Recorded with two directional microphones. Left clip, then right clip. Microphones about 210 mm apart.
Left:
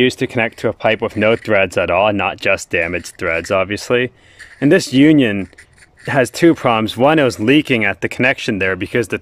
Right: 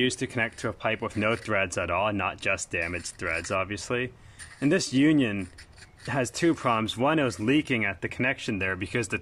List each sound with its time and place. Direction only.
0.0 s speech: 45° left (ahead or behind)